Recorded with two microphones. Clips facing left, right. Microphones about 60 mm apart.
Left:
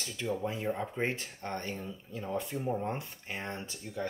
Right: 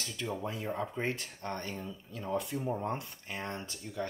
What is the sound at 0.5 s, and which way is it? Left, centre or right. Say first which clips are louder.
Speech: left 2 dB; left.